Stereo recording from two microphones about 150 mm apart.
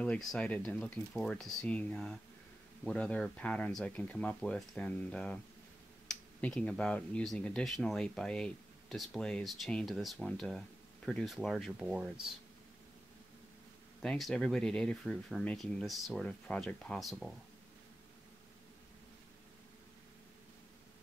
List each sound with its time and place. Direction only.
0.0 s speech: 5° left (ahead or behind)
14.0 s speech: 5° left (ahead or behind)